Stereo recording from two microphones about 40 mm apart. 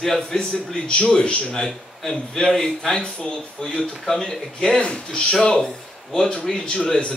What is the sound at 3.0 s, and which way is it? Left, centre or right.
Speech, left.